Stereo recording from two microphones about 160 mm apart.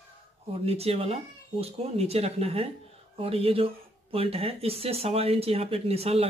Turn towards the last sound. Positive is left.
turn(degrees=-40)  # may be behind; listen again after turning